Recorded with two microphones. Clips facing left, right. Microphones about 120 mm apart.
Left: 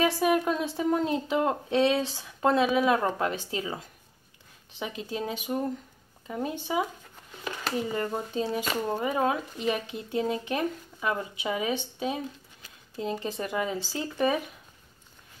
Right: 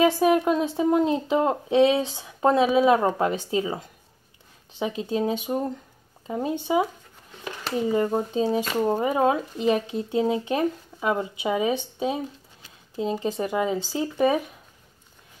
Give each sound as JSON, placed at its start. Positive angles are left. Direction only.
{"t": 0.0, "sound": "speech", "side_deg": -20}